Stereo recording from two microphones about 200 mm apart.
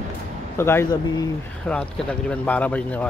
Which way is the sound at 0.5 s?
10° left (ahead or behind).